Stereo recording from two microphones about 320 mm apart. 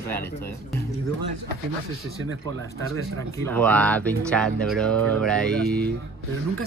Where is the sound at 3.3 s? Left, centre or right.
Centre.